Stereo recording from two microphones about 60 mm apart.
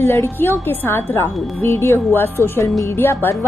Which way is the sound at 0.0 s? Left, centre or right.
Left.